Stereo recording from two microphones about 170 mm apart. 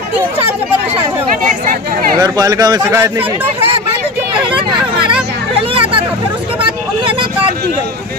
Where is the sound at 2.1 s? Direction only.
20° right (ahead or behind).